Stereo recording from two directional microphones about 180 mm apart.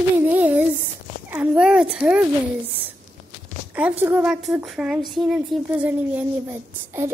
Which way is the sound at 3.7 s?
10° right (ahead or behind).